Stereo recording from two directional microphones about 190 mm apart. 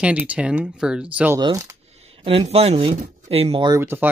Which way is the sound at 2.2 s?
30° right (ahead or behind).